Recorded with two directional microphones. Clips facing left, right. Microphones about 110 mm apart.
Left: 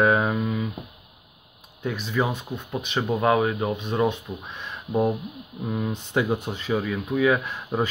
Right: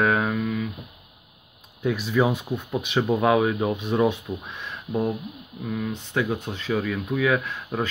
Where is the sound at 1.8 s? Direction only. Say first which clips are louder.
Right 4 dB; 5° right (ahead or behind).